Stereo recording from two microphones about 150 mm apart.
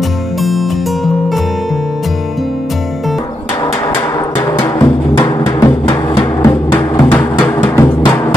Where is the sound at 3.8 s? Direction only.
25° left (ahead or behind).